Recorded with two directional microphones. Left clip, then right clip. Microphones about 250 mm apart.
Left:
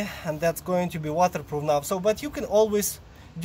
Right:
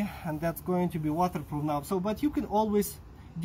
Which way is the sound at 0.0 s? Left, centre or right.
Left.